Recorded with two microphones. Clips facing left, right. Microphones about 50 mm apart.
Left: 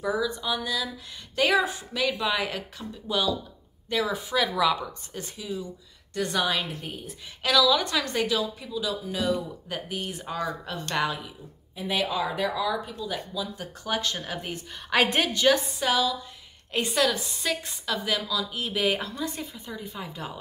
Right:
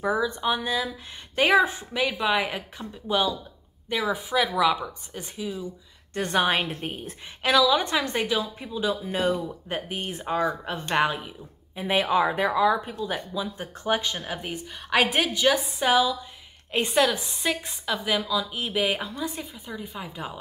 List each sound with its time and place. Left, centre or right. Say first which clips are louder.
0.0 s a woman's voice: right 3 dB; right
6.1 s speech: right 3 dB; right
7.4 s a woman's voice: right 1 dB; right
14.1 s speech: right 1 dB; centre
15.8 s a woman's voice: right 3 dB; centre